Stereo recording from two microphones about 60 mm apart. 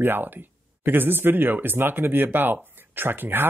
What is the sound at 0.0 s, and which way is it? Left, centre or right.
Speech, right.